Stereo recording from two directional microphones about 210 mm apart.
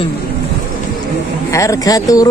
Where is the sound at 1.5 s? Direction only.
15° left (ahead or behind).